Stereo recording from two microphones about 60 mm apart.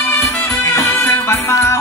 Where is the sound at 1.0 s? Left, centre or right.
Left.